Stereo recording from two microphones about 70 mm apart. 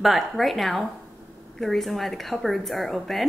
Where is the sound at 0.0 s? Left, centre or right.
Centre.